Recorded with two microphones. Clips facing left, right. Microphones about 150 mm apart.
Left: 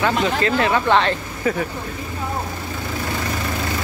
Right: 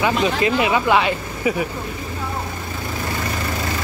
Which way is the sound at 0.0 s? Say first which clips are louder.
Right 1 dB; 15° right (ahead or behind).